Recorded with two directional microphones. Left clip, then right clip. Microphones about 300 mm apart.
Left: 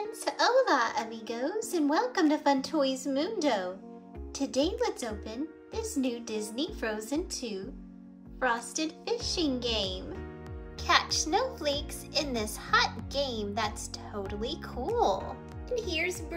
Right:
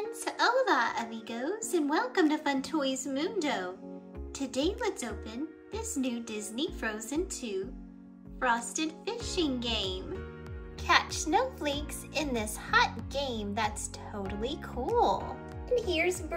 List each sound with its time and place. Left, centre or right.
0.2 s a woman's voice: centre
15.8 s speech: left